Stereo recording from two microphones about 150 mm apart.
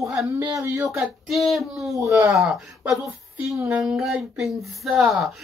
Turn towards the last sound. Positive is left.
turn(degrees=0)  # may be behind; listen again after turning